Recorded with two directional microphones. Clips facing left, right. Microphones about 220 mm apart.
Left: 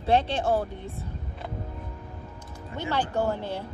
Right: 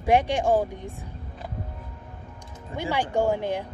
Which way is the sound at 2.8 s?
15° right (ahead or behind).